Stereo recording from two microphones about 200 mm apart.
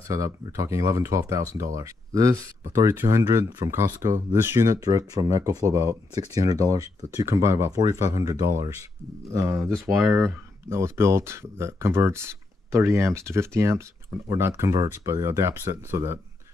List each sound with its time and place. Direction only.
0.1 s speech: 15° right (ahead or behind)